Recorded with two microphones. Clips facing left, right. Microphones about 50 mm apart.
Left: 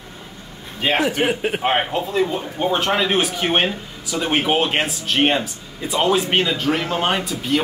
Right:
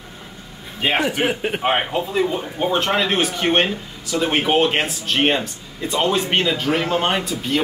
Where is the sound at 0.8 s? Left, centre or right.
Centre.